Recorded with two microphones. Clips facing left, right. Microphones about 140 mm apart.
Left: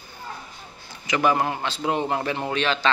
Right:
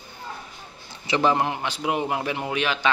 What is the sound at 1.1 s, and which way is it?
A man's voice, 25° right (ahead or behind).